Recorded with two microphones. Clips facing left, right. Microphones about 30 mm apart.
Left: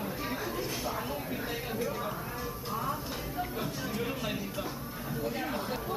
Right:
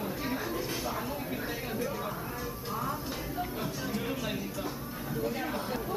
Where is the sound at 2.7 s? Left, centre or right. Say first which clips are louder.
Even; centre.